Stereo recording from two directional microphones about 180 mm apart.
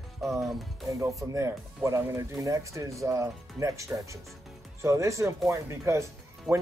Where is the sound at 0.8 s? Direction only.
15° right (ahead or behind).